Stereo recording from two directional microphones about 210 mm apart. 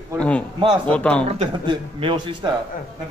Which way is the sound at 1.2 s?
30° right (ahead or behind).